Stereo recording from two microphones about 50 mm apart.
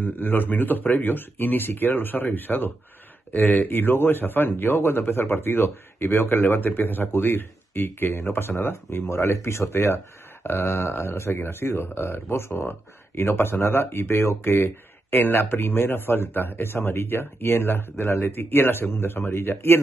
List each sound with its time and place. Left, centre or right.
0.0 s a man's voice: left
15.1 s a man's voice: left